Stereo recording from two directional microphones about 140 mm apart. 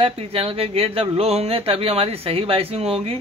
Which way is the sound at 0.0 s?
45° right (ahead or behind).